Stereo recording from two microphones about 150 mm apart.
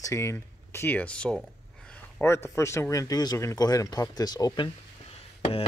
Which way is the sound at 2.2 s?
15° left (ahead or behind).